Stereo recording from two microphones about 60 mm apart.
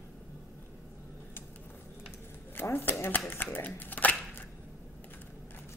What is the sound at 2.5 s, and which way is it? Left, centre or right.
Typewriter, left.